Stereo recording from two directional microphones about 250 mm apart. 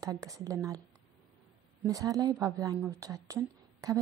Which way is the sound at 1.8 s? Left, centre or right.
Centre.